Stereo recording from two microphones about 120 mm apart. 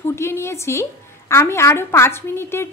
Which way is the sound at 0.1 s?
20° left (ahead or behind).